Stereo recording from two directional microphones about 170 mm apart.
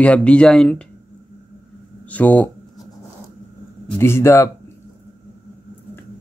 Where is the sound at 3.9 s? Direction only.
15° left (ahead or behind).